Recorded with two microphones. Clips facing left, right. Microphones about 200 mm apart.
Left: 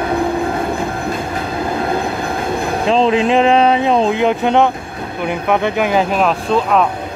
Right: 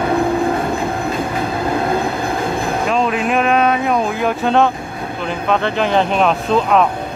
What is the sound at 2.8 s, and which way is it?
Speech, 25° left (ahead or behind).